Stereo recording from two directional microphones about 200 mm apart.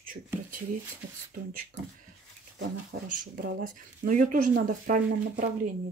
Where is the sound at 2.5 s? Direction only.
45° right (ahead or behind).